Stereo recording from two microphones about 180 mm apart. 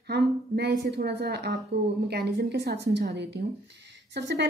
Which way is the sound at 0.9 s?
65° right (ahead or behind).